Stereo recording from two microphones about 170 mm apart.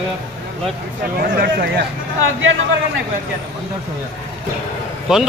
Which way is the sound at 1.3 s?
60° right (ahead or behind).